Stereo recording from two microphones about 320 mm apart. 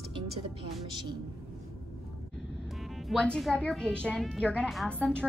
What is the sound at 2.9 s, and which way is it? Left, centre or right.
A woman's voice, centre.